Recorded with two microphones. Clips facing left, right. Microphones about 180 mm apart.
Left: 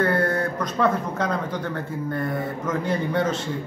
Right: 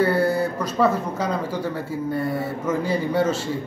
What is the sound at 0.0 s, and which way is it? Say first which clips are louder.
Speech: right 2 dB; 5° right (ahead or behind).